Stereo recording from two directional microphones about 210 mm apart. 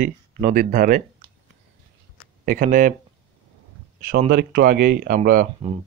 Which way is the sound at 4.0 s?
45° right (ahead or behind).